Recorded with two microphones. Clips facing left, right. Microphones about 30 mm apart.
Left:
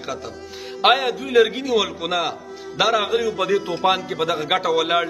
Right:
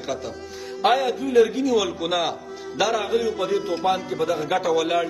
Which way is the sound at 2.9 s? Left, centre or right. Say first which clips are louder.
Left 4 dB; left.